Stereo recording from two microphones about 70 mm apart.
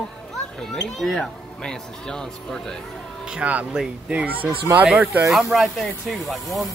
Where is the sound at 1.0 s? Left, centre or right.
Centre.